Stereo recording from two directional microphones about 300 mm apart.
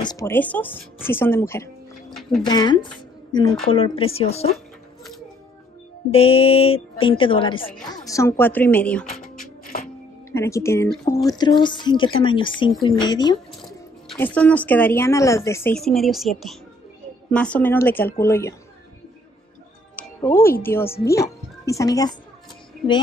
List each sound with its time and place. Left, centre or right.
0.0 s speech: centre
1.0 s music: centre
2.4 s a woman's voice: centre
6.1 s a woman's voice: centre
9.1 s music: left
10.3 s a woman's voice: centre
13.6 s music: centre
14.7 s a woman's voice: centre
20.0 s music: centre
20.6 s a woman's voice: centre